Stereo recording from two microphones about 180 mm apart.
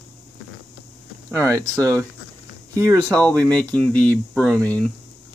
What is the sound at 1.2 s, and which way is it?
Speech, 15° right (ahead or behind).